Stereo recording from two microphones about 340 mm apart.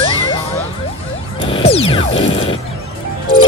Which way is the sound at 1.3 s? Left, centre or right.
Centre.